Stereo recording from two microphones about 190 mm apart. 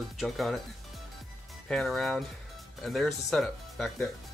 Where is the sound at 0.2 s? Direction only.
Centre (ahead or behind).